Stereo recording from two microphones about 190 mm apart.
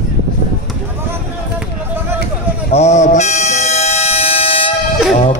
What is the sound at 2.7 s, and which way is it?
Train, 35° left (ahead or behind).